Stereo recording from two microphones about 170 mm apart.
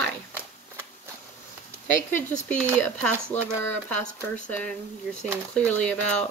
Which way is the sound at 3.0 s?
10° left (ahead or behind).